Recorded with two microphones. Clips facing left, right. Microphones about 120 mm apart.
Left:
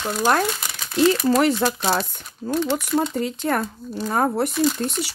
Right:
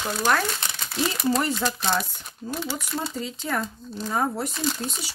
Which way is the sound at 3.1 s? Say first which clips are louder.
Left 6 dB; 60° left (ahead or behind).